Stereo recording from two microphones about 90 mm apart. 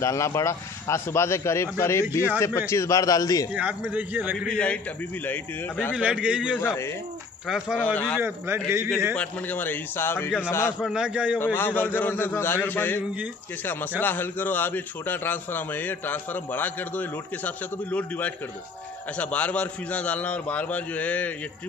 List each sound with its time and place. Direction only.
0.0 s a man's voice: 35° left (ahead or behind)
3.9 s a man's voice: 15° right (ahead or behind)
5.2 s a man's voice: 20° left (ahead or behind)
5.9 s a man's voice: 10° right (ahead or behind)
6.6 s a man's voice: 30° left (ahead or behind)
7.4 s a man's voice: 5° right (ahead or behind)
7.8 s a man's voice: 20° left (ahead or behind)
8.2 s a man's voice: 25° right (ahead or behind)
9.1 s a man's voice: 15° left (ahead or behind)
10.9 s a man's voice: 10° right (ahead or behind)
11.3 s a man's voice: 25° left (ahead or behind)